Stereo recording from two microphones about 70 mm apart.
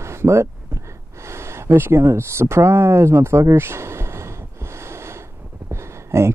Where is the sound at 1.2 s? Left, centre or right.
Right.